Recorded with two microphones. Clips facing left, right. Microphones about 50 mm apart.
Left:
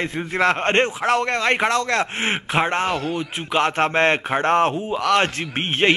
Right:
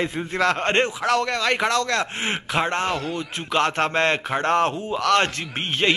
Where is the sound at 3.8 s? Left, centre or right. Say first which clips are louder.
Left 3 dB; left.